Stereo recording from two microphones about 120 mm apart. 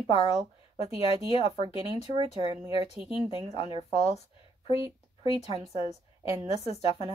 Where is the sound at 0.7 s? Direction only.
55° left (ahead or behind).